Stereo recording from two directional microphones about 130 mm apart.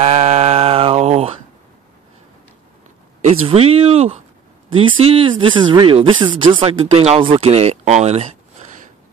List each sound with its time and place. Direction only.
0.0 s mantra: 55° right (ahead or behind)
3.2 s speech: 55° right (ahead or behind)